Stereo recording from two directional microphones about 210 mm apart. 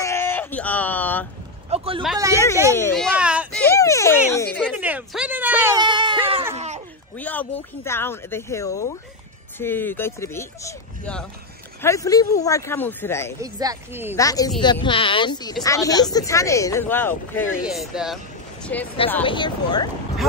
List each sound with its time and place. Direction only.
0.0 s a sound: 10° left (ahead or behind)
1.7 s speech: 25° right (ahead or behind)
2.1 s speech: 15° right (ahead or behind)
2.7 s a child's voice: 5° left (ahead or behind)
3.6 s speech: 15° left (ahead or behind)
4.7 s speech: 5° right (ahead or behind)
5.8 s speech: 20° right (ahead or behind)
6.5 s a sound: 30° right (ahead or behind)
7.2 s speech: 5° left (ahead or behind)
13.4 s speech: 15° right (ahead or behind)
14.1 s speech: 15° left (ahead or behind)
17.6 s speech: centre (ahead or behind)
19.2 s speech: 20° left (ahead or behind)